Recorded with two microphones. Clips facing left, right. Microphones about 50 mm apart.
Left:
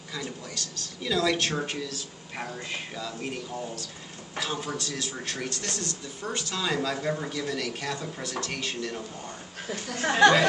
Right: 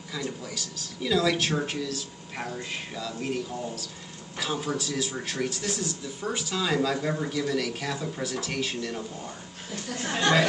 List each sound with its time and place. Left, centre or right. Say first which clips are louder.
0.6 s a man's voice: right 2 dB; centre
9.9 s speech: left 7 dB; left